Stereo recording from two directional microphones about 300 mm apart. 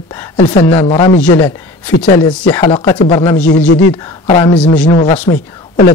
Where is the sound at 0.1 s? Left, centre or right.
Centre.